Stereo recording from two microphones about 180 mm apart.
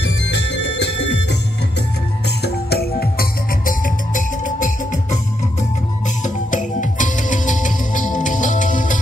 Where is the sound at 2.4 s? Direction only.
60° left (ahead or behind).